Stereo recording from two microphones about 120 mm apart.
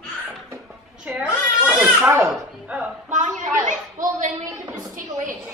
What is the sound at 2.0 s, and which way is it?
Speech, 20° right (ahead or behind).